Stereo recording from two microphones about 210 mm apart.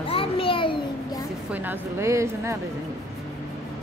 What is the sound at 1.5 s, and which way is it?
Speech, 10° right (ahead or behind).